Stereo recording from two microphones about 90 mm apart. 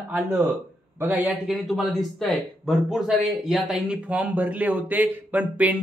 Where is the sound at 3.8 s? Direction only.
15° right (ahead or behind).